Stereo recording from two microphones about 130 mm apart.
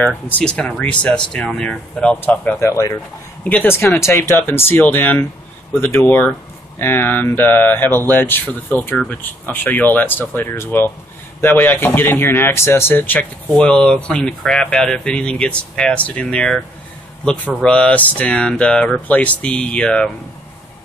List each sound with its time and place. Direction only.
0.0 s speech: 10° left (ahead or behind)